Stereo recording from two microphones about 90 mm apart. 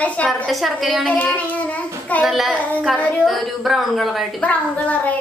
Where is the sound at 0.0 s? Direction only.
15° left (ahead or behind).